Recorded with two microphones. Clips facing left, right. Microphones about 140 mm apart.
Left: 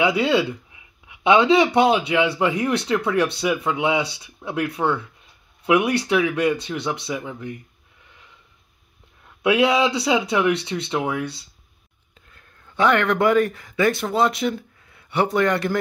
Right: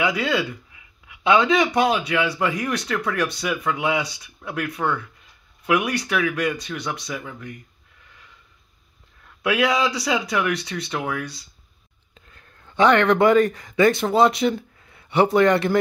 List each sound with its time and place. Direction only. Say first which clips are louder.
0.0 s speech: left 4 dB; 30° left (ahead or behind)
9.4 s speech: left 3 dB; 25° left (ahead or behind)
12.3 s speech: right 1 dB; centre (ahead or behind)